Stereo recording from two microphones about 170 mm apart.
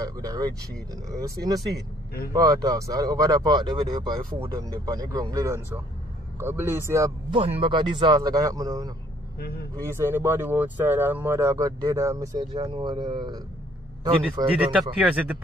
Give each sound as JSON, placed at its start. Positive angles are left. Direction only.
{"t": 0.0, "sound": "speech", "side_deg": -20}
{"t": 7.3, "sound": "speech", "side_deg": -30}
{"t": 9.4, "sound": "speech", "side_deg": 65}
{"t": 9.8, "sound": "speech", "side_deg": -15}
{"t": 14.8, "sound": "speech", "side_deg": -5}